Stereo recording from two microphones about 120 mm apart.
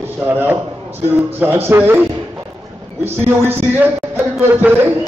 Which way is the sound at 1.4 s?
20° right (ahead or behind).